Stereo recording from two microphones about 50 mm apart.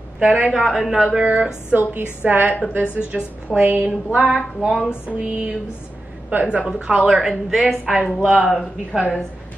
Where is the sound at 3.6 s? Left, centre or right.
Right.